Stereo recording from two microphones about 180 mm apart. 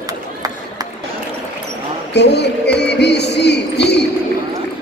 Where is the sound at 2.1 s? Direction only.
70° left (ahead or behind).